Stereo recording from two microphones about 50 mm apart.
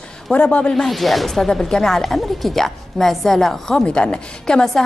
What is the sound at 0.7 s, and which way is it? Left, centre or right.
A woman's voice, centre.